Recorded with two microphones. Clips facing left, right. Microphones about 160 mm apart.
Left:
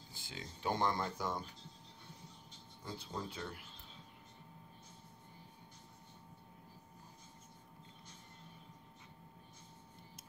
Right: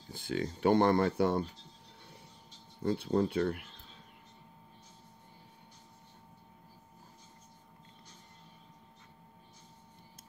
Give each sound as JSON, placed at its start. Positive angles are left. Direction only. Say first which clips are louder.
{"t": 0.1, "sound": "speech", "louder": "right 16 dB", "side_deg": -60}
{"t": 2.8, "sound": "speech", "louder": "right 15 dB", "side_deg": -65}